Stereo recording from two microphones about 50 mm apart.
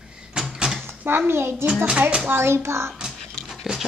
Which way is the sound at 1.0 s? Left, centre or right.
Right.